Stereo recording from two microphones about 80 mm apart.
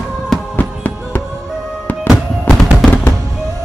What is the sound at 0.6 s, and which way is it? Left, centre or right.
Music, left.